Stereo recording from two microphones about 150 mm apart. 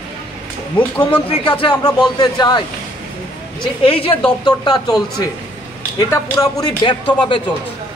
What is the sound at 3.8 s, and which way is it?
Speech, 40° left (ahead or behind).